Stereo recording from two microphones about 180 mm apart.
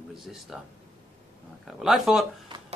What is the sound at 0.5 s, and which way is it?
A man's voice, 5° right (ahead or behind).